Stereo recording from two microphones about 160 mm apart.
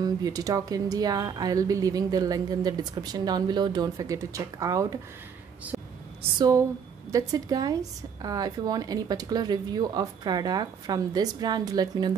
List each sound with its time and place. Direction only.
0.0 s a woman's voice: 25° right (ahead or behind)
5.7 s a sound: 5° right (ahead or behind)
6.3 s a woman's voice: 25° right (ahead or behind)